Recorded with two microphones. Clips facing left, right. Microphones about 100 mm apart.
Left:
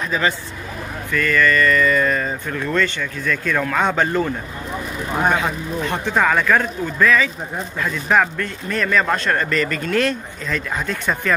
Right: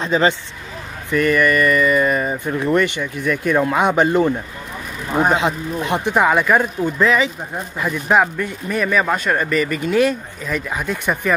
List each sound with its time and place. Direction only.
0.0 s speech: 25° right (ahead or behind)
5.3 s speech: 20° right (ahead or behind)